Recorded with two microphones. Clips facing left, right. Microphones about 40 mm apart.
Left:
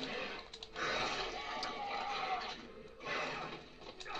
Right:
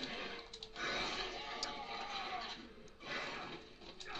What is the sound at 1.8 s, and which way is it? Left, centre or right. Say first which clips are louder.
Vehicle: left 5 dB; left.